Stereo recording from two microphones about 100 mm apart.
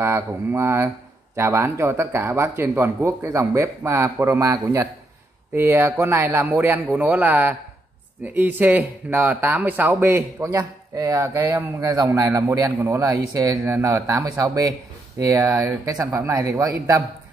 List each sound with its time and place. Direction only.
0.0 s speech: 25° right (ahead or behind)